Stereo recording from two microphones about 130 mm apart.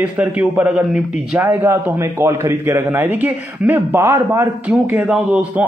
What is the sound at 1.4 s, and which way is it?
A man's voice, 20° right (ahead or behind).